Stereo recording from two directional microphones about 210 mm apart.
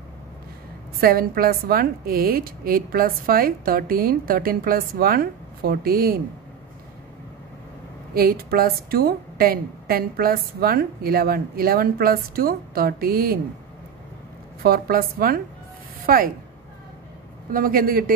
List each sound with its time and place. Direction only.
1.0 s a woman's voice: 45° right (ahead or behind)
8.1 s a woman's voice: 45° right (ahead or behind)
14.6 s a woman's voice: 45° right (ahead or behind)
17.5 s a woman's voice: 40° right (ahead or behind)